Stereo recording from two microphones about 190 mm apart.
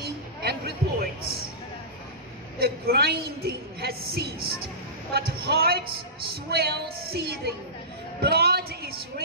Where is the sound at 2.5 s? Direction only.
55° right (ahead or behind).